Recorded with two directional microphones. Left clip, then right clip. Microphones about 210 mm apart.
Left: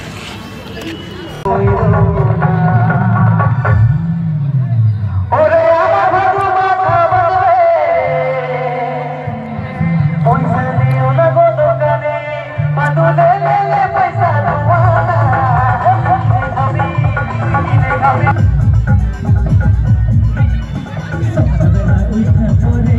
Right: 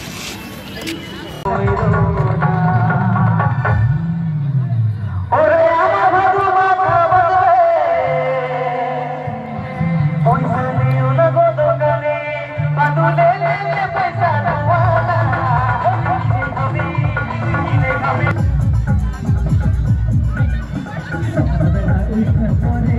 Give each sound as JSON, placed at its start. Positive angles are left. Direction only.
{"t": 1.5, "sound": "music", "side_deg": 35}
{"t": 5.3, "sound": "a sound", "side_deg": 45}
{"t": 9.8, "sound": "music", "side_deg": 10}